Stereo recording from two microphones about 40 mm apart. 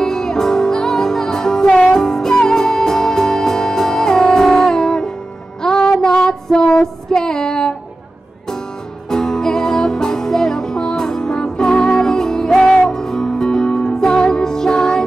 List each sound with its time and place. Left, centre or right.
0.0 s music: centre
5.6 s child singing: centre
9.1 s music: centre